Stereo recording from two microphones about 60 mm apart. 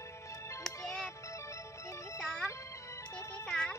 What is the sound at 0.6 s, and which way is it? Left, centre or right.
Music, centre.